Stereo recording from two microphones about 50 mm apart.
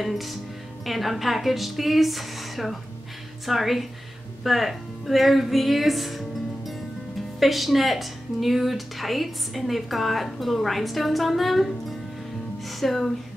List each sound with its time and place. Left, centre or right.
0.0 s a woman's voice: centre
12.6 s music: centre